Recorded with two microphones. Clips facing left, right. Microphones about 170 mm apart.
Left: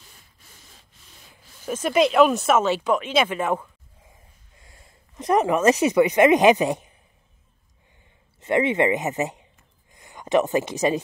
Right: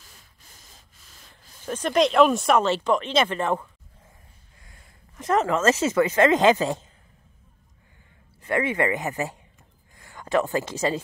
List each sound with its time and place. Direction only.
1.3 s speech: 10° left (ahead or behind)
4.6 s speech: 25° left (ahead or behind)
8.4 s speech: 20° left (ahead or behind)